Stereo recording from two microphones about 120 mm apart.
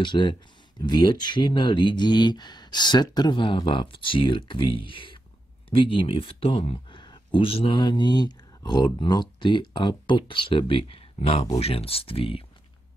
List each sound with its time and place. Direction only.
0.0 s speech: 40° left (ahead or behind)